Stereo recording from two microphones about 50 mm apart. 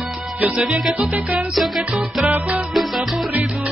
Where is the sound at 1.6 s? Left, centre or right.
Centre.